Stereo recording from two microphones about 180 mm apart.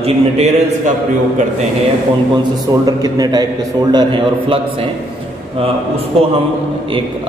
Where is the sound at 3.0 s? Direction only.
20° right (ahead or behind).